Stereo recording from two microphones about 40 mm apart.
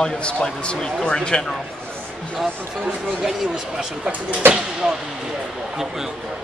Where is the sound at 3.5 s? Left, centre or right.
Right.